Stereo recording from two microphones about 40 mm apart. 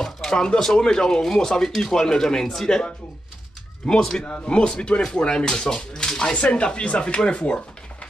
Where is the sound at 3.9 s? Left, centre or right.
Centre.